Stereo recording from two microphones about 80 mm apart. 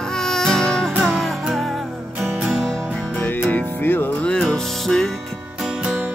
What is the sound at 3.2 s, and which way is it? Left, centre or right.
Music, left.